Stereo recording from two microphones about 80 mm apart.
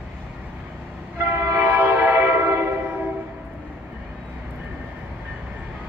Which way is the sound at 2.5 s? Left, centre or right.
Right.